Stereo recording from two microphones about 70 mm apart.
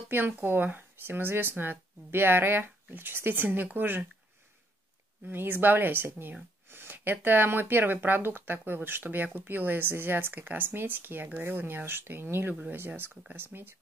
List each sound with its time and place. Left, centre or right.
0.1 s speech: right
5.2 s speech: right